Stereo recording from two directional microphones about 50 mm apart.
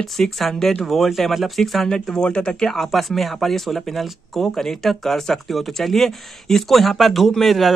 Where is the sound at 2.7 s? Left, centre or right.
Centre.